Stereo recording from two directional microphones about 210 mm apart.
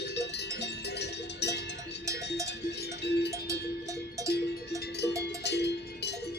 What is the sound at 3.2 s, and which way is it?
Cowbell, 15° right (ahead or behind).